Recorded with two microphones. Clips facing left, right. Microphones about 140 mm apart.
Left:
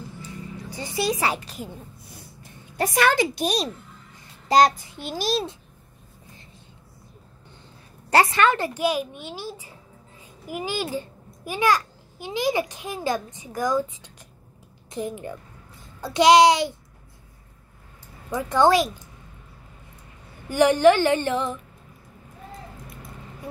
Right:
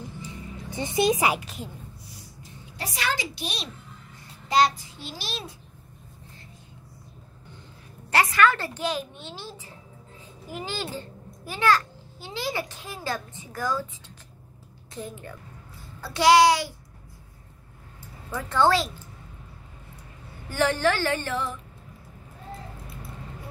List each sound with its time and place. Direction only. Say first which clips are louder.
0.3 s speech: left 2 dB; 20° right (ahead or behind); by 1.7 s centre (ahead or behind)
2.8 s a child's voice: left 10 dB; 50° left (ahead or behind)
8.1 s a child's voice: left 2 dB; 30° left (ahead or behind)
18.3 s a child's voice: left 3 dB; 15° left (ahead or behind)
20.4 s a woman's voice: left 7 dB; 15° left (ahead or behind)